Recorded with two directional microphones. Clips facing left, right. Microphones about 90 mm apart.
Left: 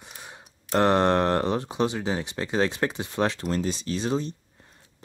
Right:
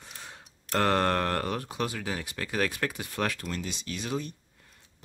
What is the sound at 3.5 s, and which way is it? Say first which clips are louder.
Speech: left 8 dB; 35° left (ahead or behind).